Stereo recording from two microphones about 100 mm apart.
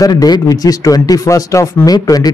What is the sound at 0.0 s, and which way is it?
Speech, 40° left (ahead or behind).